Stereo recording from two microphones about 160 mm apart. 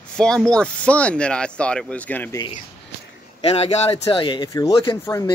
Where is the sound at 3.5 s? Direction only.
40° left (ahead or behind); by 5.2 s 20° left (ahead or behind).